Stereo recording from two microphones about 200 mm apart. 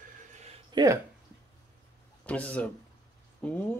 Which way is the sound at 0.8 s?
20° right (ahead or behind).